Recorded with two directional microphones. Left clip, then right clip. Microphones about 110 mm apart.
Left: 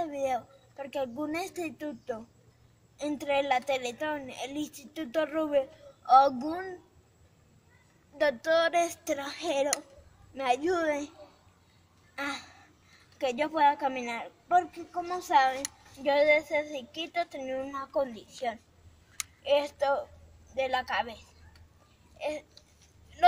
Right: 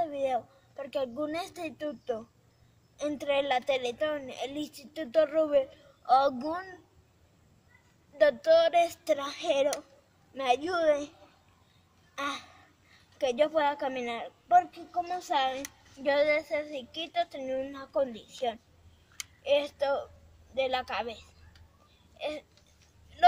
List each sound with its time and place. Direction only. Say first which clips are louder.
0.0 s a sound: right 1 dB; 25° right (ahead or behind)
1.2 s a woman's voice: even; 25° right (ahead or behind)
8.2 s a woman's voice: right 3 dB; 25° right (ahead or behind)
12.2 s a woman's voice: right 1 dB; 20° right (ahead or behind)
19.4 s a woman's voice: left 1 dB; 20° right (ahead or behind)